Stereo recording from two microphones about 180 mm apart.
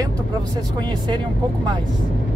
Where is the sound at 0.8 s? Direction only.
25° right (ahead or behind).